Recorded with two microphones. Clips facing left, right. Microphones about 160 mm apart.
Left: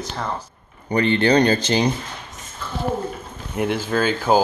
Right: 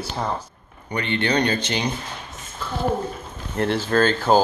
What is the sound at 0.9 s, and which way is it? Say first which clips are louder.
Speech: left 6 dB; 35° left (ahead or behind).